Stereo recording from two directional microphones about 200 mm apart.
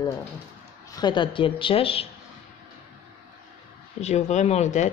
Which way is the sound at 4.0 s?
35° left (ahead or behind).